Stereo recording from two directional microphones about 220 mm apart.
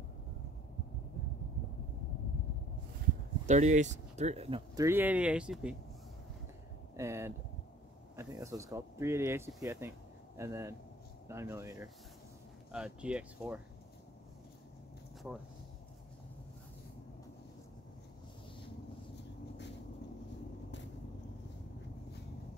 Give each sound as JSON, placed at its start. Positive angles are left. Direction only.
{"t": 3.4, "sound": "speech", "side_deg": -30}
{"t": 4.8, "sound": "speech", "side_deg": -10}
{"t": 7.0, "sound": "speech", "side_deg": -10}
{"t": 15.2, "sound": "speech", "side_deg": -5}
{"t": 19.1, "sound": "a sound", "side_deg": 50}